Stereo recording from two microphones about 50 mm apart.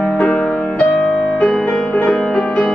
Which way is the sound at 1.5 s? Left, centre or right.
Centre.